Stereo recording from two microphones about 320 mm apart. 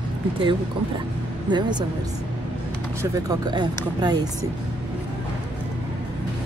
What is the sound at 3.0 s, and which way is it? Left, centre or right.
A woman's voice, centre.